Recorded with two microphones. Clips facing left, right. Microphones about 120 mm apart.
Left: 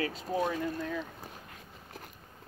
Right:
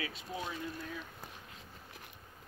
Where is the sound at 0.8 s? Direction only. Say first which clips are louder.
Left 8 dB; 80° left.